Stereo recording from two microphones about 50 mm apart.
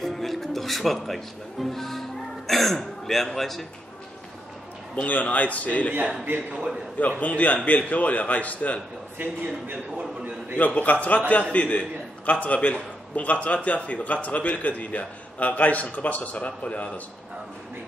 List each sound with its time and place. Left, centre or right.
0.0 s music: centre
4.9 s a man's voice: left
6.2 s a man's voice: right
7.0 s a man's voice: left
10.6 s a man's voice: left